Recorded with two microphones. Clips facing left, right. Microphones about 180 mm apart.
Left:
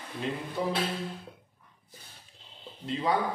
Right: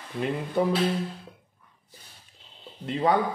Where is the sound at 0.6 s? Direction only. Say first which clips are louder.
Right 7 dB; 60° right (ahead or behind).